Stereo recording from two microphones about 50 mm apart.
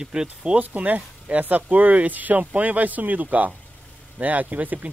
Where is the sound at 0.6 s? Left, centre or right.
Right.